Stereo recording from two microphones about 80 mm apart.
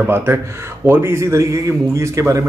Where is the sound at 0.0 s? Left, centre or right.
Right.